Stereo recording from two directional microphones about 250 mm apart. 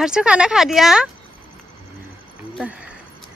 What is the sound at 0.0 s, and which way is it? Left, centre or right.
Speech, centre.